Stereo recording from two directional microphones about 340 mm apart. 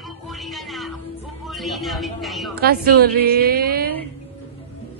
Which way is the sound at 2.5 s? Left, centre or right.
Right.